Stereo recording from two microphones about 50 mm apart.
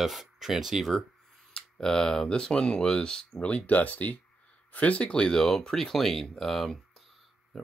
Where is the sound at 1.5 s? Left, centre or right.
Centre.